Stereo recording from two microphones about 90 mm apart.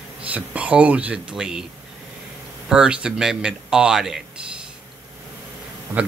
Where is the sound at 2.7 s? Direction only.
10° right (ahead or behind).